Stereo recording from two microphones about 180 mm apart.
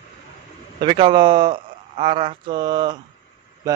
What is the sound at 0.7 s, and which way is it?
A man's voice, 30° right (ahead or behind).